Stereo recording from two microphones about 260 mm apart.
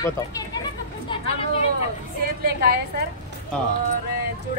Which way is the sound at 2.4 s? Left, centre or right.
Right.